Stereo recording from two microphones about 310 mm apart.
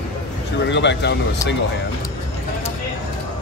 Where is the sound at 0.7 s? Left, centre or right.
Left.